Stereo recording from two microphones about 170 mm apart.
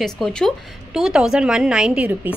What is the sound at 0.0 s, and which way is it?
A woman's voice, 5° left (ahead or behind).